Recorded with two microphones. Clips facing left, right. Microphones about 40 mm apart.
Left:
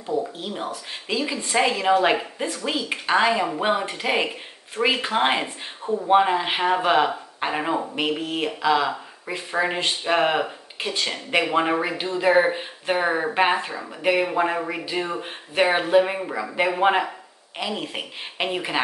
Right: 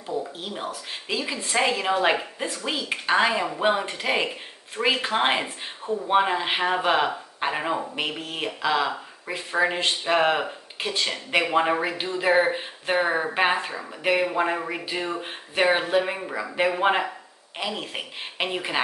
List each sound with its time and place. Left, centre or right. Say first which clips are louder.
0.6 s speech: left 2 dB; centre